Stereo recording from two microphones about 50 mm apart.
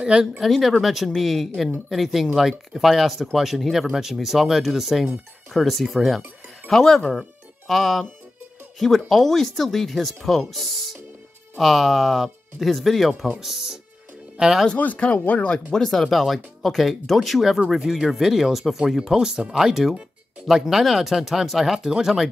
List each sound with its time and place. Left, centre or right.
0.0 s speech: centre
0.4 s speech: centre
7.2 s music: centre
8.7 s speech: centre
14.3 s music: centre
14.8 s speech: left
15.7 s speech: centre